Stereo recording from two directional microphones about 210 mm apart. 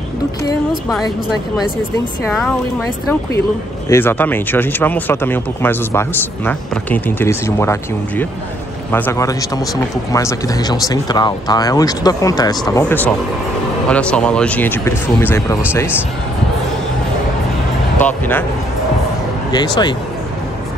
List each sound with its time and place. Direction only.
3.9 s speech: 10° left (ahead or behind)
18.0 s speech: 10° left (ahead or behind)
19.5 s speech: 20° left (ahead or behind)